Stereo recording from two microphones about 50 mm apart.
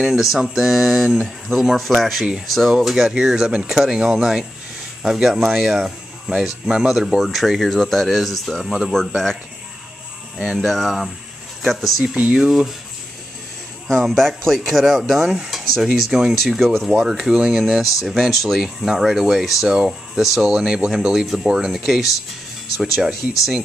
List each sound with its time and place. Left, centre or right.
0.0 s speech: centre
8.6 s speech: centre
8.9 s speech: centre
13.8 s speech: centre
16.5 s speech: centre
16.9 s speech: centre
19.7 s speech: centre